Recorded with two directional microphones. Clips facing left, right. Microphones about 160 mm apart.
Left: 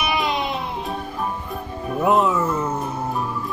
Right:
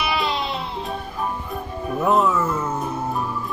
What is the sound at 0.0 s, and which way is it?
Music, 20° left (ahead or behind).